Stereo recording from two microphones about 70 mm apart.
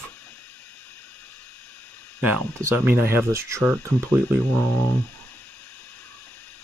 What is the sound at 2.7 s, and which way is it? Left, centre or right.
Speech, right.